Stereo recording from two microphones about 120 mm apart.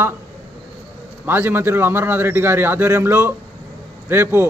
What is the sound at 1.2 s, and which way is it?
A man's voice, 15° right (ahead or behind).